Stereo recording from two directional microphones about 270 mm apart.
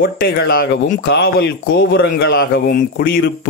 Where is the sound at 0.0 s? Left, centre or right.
Left.